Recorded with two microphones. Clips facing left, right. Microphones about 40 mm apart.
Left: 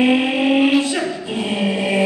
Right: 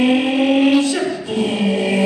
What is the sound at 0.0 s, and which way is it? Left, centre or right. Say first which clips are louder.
Mantra: right 1 dB; centre.